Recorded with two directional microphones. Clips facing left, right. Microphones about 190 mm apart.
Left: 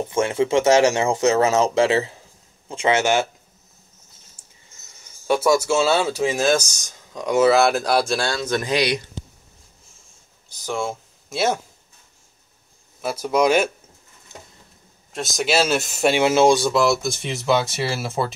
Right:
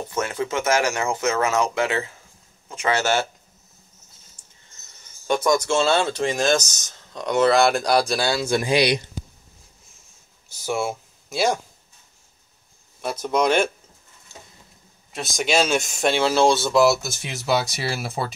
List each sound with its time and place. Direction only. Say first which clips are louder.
0.1 s speech: left 7 dB; 25° left (ahead or behind)
4.4 s a sound: left 2 dB; 10° left (ahead or behind)
5.2 s speech: left 2 dB; 5° left (ahead or behind); by 9.2 s 10° right (ahead or behind)
10.5 s speech: right 1 dB; 10° right (ahead or behind)
13.0 s speech: left 2 dB; 10° left (ahead or behind)
14.3 s a sound: left 3 dB; 20° left (ahead or behind)
15.1 s speech: left 1 dB; centre (ahead or behind)
16.7 s speech: right 1 dB; 5° right (ahead or behind)